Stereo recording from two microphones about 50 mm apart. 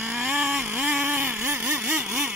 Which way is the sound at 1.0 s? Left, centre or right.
Right.